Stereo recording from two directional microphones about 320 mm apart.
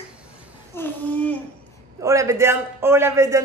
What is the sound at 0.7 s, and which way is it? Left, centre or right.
Speech, centre.